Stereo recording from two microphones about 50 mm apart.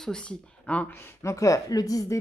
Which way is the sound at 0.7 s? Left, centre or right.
Left.